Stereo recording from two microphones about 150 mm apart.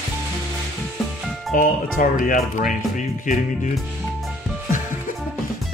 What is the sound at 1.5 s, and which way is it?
Speech, 65° left (ahead or behind).